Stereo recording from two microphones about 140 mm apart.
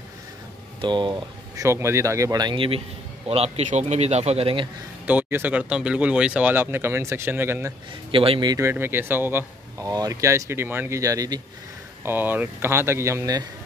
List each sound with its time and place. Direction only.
0.7 s speech: 35° right (ahead or behind)
1.6 s speech: 20° right (ahead or behind); by 4.6 s 45° right (ahead or behind)
5.0 s speech: 10° right (ahead or behind)
8.1 s a man's voice: 40° right (ahead or behind)
8.5 s speech: 15° right (ahead or behind)
12.0 s speech: 15° right (ahead or behind)